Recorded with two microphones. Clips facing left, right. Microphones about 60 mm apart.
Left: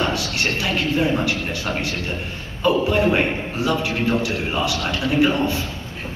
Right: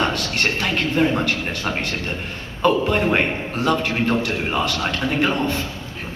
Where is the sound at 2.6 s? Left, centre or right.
Right.